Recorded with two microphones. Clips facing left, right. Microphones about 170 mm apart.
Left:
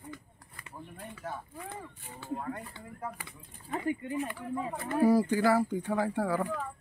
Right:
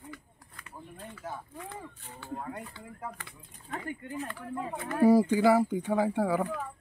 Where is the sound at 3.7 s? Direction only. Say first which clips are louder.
Left 5 dB; 5° left (ahead or behind).